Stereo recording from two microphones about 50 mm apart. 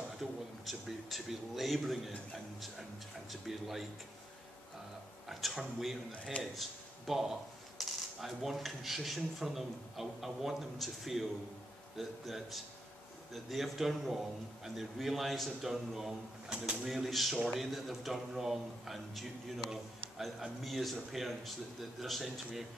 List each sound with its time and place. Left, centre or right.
0.2 s a man's voice: centre
3.3 s speech: centre
5.3 s speech: centre
7.8 s coin: centre
8.2 s speech: centre
16.4 s speech: centre
16.8 s speech: centre